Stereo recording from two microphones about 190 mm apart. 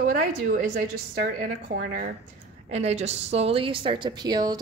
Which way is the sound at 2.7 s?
35° right (ahead or behind).